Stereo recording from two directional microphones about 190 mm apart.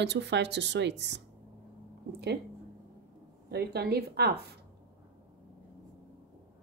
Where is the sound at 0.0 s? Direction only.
65° right (ahead or behind).